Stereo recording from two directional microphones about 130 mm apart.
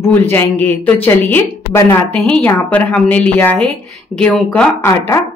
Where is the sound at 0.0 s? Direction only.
15° left (ahead or behind).